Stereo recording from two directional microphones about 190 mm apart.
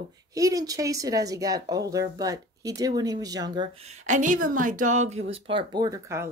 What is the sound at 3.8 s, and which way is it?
Speech, 40° right (ahead or behind).